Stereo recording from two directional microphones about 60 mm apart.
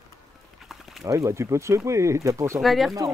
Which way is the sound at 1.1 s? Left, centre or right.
Right.